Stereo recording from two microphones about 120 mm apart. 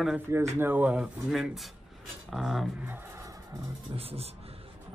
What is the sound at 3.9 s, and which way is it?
Speech, 55° right (ahead or behind).